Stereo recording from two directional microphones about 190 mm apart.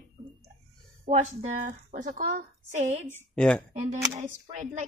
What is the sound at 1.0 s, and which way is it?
A woman's voice, 45° right (ahead or behind).